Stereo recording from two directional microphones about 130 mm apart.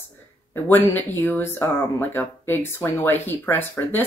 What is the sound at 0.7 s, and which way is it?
Speech, 15° left (ahead or behind).